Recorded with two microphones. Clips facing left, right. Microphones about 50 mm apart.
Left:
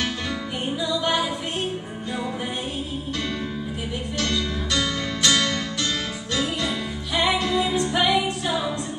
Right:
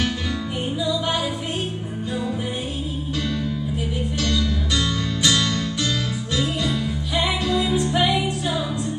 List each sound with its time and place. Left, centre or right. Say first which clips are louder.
7.4 s music: right 1 dB; centre